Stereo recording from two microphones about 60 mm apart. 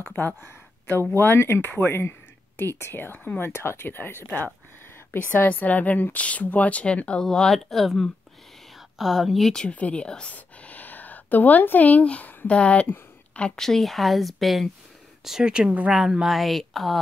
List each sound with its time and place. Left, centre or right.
1.1 s speech: left; by 7.2 s centre
7.2 s speech: centre
9.7 s speech: left
13.6 s speech: centre
15.2 s speech: centre
15.9 s speech: centre